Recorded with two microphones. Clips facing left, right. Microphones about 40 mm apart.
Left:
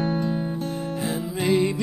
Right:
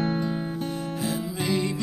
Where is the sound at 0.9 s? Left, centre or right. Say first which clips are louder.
Left 1 dB; left.